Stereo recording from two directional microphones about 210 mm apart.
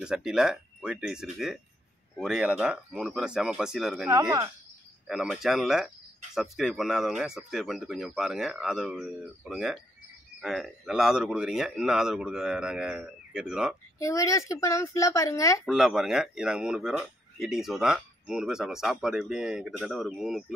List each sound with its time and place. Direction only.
0.0 s speech: 5° right (ahead or behind)
4.1 s speech: 20° right (ahead or behind)
5.0 s speech: centre (ahead or behind)
14.0 s speech: 15° left (ahead or behind)
15.6 s speech: centre (ahead or behind)